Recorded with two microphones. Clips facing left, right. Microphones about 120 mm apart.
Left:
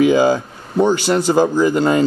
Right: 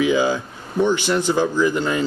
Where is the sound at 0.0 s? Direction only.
45° left (ahead or behind).